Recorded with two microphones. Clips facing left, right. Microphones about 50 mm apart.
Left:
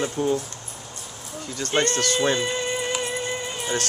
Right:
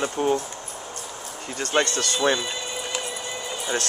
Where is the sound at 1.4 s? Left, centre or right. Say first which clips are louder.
Right 1 dB; right.